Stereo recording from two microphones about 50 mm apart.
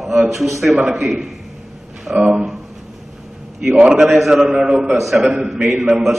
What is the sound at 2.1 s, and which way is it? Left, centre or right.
Speech, right.